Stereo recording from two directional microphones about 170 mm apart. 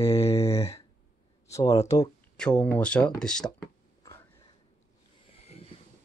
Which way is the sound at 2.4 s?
5° left (ahead or behind).